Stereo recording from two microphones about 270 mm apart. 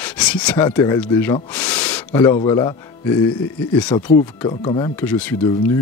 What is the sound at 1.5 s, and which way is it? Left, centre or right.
Speech, centre.